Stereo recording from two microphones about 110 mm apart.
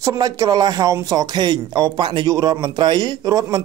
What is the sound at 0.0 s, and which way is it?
Speech, 30° right (ahead or behind).